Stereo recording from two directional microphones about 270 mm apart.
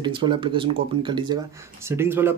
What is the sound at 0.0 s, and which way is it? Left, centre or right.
Speech, centre.